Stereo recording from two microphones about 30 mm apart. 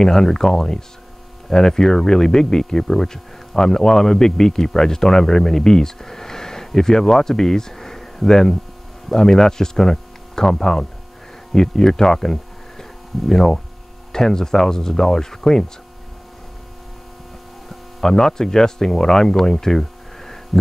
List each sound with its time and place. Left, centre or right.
0.0 s speech: centre
17.6 s speech: centre